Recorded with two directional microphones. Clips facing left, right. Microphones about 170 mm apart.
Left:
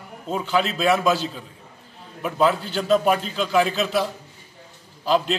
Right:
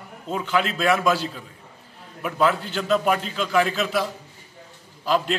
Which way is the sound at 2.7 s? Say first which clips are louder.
Left 2 dB; 30° left (ahead or behind).